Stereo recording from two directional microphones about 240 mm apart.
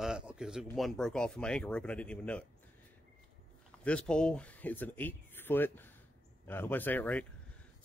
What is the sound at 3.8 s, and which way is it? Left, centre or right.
A man's voice, centre.